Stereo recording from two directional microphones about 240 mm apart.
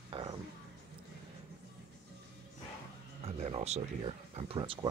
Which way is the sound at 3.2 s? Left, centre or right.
Right.